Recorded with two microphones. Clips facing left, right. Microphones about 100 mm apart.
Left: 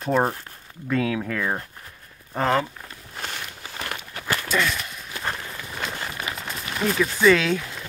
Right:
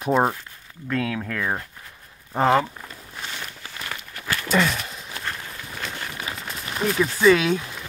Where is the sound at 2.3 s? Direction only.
20° right (ahead or behind).